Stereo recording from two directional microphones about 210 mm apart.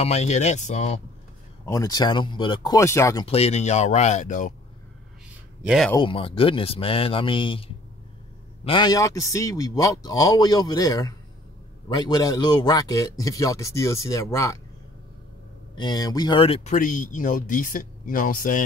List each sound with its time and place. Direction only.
0.0 s speech: 30° left (ahead or behind)
1.7 s speech: 15° left (ahead or behind)
3.3 s speech: 30° left (ahead or behind)
5.6 s speech: 5° right (ahead or behind)
5.9 s a man's voice: 25° left (ahead or behind)
15.7 s speech: 20° left (ahead or behind); by 18.6 s 40° left (ahead or behind)